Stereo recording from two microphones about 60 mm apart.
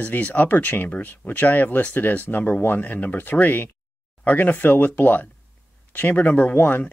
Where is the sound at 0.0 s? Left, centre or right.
Left.